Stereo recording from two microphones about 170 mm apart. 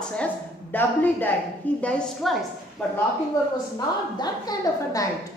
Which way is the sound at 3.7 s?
25° left (ahead or behind).